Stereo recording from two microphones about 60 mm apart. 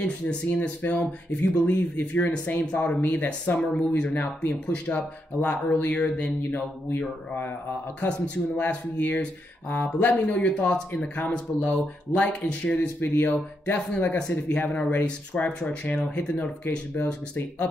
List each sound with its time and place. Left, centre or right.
0.0 s speech: centre
0.5 s speech: left
8.6 s speech: left